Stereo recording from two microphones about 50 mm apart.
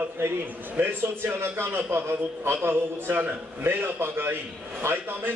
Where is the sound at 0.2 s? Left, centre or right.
Right.